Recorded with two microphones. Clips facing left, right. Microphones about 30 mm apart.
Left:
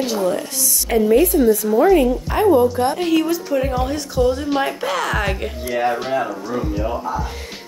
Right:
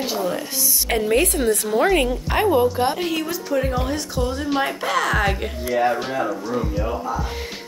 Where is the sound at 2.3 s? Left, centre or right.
Right.